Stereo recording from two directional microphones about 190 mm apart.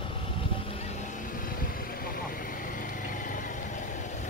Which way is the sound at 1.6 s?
50° left (ahead or behind).